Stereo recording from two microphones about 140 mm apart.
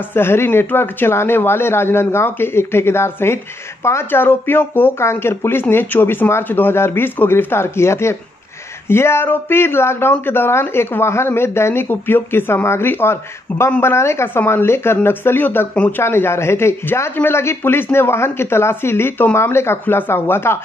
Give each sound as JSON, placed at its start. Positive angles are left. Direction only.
{"t": 0.1, "sound": "speech", "side_deg": 15}